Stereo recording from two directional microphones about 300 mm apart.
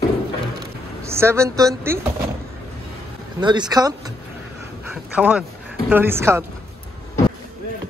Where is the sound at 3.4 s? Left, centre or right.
Centre.